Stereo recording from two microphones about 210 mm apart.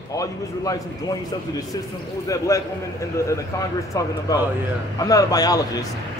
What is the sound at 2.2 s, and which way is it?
A man's voice, 15° left (ahead or behind).